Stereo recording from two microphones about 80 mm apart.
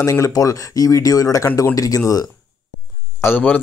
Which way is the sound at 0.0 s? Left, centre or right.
Left.